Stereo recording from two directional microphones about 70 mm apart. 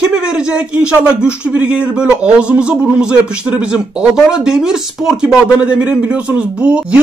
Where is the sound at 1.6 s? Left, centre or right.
Centre.